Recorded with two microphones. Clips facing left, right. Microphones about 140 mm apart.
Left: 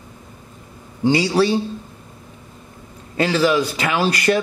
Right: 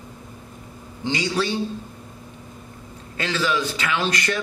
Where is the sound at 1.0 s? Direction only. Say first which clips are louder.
Left 8 dB; 35° left (ahead or behind).